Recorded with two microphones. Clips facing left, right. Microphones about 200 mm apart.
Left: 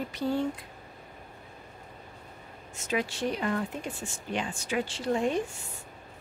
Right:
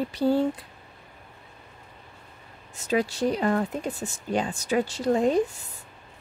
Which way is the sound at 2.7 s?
35° right (ahead or behind).